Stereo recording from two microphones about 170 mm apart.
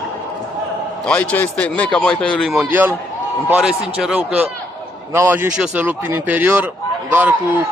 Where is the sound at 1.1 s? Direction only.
5° left (ahead or behind).